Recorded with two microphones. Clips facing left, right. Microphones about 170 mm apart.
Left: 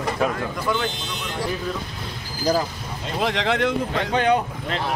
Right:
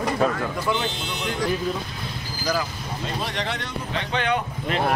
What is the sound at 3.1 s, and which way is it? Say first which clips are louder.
Speech: left 9 dB; 90° left.